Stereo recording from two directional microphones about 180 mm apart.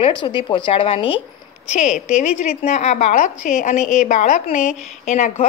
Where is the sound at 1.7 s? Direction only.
40° left (ahead or behind).